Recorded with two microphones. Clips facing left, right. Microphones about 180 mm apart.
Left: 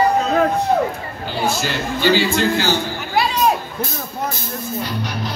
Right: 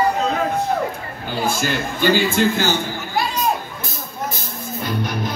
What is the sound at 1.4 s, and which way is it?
A man's voice, 50° right (ahead or behind).